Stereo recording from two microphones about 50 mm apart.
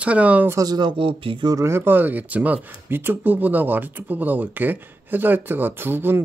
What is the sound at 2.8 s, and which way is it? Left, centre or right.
Speech, right.